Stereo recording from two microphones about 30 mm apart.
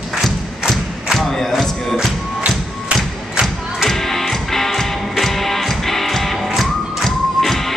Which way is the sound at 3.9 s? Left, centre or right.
Centre.